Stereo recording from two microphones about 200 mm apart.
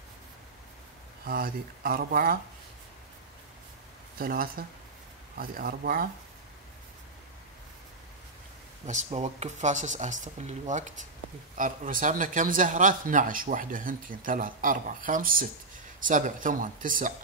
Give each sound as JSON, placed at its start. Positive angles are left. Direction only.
{"t": 1.2, "sound": "speech", "side_deg": -45}
{"t": 4.2, "sound": "speech", "side_deg": -45}
{"t": 8.8, "sound": "speech", "side_deg": -35}